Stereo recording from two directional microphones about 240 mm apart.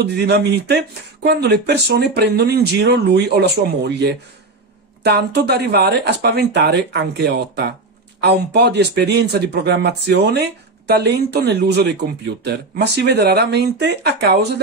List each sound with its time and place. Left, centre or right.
0.0 s speech: right